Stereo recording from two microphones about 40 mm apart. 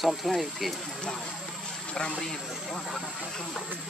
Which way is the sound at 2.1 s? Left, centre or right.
Centre.